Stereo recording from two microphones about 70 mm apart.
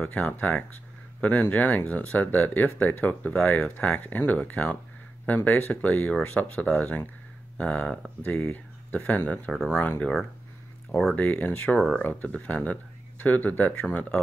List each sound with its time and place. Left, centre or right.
0.0 s speech: left
9.5 s speech: centre
10.9 s speech: centre
11.1 s speech: left
11.6 s speech: centre
12.0 s speech: left